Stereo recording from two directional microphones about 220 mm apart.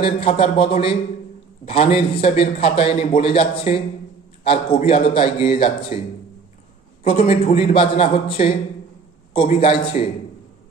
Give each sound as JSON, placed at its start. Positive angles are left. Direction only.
{"t": 0.0, "sound": "a man's voice", "side_deg": 25}
{"t": 7.1, "sound": "a man's voice", "side_deg": 25}